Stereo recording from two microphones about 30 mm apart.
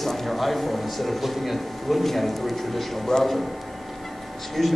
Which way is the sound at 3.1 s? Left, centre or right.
Centre.